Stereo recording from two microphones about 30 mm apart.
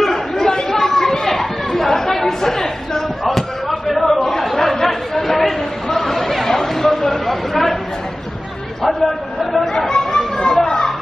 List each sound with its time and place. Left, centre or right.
0.4 s chatter: left
3.3 s chop: centre
4.6 s chatter: centre
8.8 s a sound: centre
9.7 s chatter: left
10.6 s children playing: left